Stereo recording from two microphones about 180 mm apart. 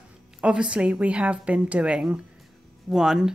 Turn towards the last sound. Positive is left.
turn(degrees=-5)  # may be behind; listen again after turning